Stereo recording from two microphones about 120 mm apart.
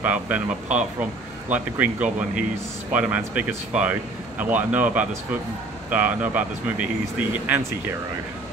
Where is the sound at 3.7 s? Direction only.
10° right (ahead or behind).